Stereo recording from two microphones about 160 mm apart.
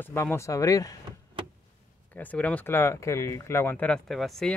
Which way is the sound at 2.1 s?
10° left (ahead or behind).